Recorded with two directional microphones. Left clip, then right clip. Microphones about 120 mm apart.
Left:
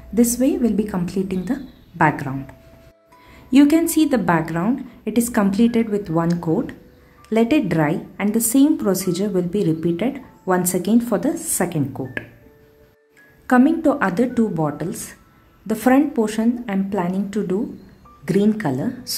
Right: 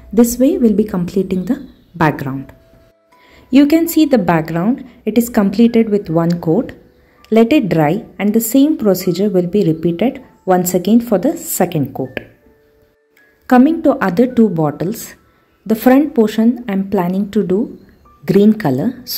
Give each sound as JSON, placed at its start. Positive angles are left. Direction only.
{"t": 0.1, "sound": "a woman's voice", "side_deg": -30}
{"t": 13.5, "sound": "a woman's voice", "side_deg": -25}